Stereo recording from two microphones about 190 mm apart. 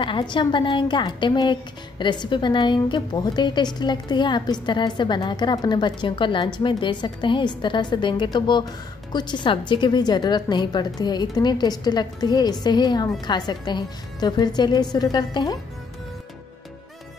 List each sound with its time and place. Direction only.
0.0 s a woman's voice: 25° left (ahead or behind)